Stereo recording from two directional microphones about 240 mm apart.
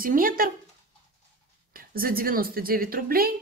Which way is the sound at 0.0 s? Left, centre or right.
Right.